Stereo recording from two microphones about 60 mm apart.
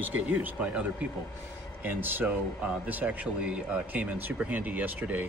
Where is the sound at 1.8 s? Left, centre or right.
Right.